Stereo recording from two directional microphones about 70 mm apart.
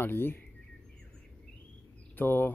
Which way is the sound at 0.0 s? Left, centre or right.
Left.